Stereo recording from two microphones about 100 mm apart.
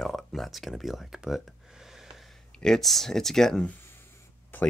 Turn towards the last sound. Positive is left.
turn(degrees=25)  # may be behind; listen again after turning